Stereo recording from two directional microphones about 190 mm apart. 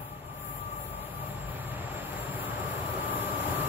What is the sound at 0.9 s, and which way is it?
Vehicle, 10° right (ahead or behind).